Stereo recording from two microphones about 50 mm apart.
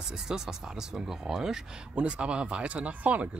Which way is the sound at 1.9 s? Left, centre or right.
Right.